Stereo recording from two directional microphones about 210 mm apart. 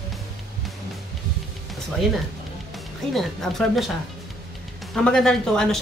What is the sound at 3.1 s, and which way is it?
Speech, centre (ahead or behind).